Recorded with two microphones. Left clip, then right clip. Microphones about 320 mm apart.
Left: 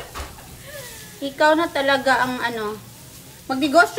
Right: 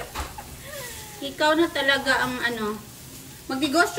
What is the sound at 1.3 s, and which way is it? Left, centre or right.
A woman's voice, centre.